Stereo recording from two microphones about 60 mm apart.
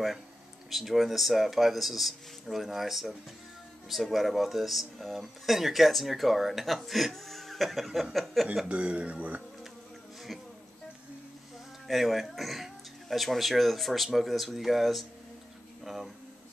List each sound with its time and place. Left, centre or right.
0.7 s speech: centre
8.6 s speech: right
11.9 s speech: centre
15.8 s a sound: centre